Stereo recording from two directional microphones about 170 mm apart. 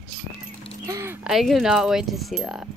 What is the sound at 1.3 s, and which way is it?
Speech, centre (ahead or behind).